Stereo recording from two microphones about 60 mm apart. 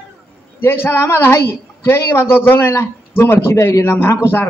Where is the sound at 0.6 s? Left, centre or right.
Left.